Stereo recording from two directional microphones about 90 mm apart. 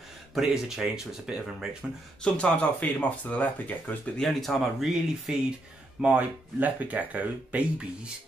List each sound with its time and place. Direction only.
0.3 s speech: 5° right (ahead or behind)
2.2 s speech: 10° left (ahead or behind)
4.2 s speech: centre (ahead or behind); by 8.1 s 15° right (ahead or behind)